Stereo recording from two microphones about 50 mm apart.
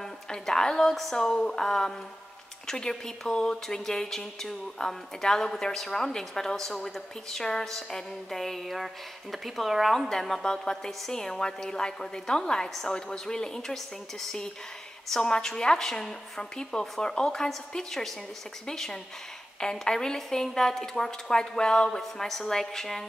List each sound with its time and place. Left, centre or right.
0.0 s a woman's voice: centre
9.9 s a woman's voice: centre
12.9 s speech: centre
15.0 s speech: centre